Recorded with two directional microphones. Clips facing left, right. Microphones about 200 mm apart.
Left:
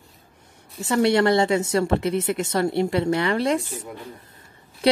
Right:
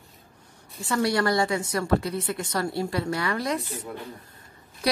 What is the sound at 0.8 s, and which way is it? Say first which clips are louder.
Speech: left 5 dB; 25° left (ahead or behind).